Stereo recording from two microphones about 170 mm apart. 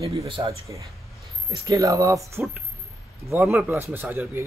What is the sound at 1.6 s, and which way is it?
Speech, 20° right (ahead or behind).